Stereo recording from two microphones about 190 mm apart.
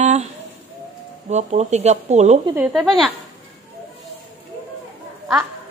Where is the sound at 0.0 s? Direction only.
35° right (ahead or behind).